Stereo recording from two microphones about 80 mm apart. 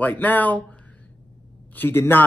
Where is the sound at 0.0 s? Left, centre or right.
Left.